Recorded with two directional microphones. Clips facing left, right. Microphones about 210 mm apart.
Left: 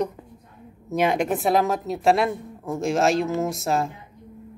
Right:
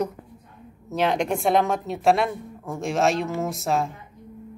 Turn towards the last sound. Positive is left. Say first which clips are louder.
# left 1 dB
turn(degrees=0)  # may be behind; listen again after turning